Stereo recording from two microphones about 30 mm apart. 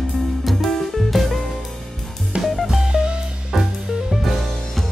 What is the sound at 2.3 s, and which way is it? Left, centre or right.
Music, right.